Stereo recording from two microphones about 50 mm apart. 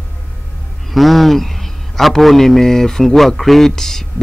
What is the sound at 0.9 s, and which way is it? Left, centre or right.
A man's voice, centre.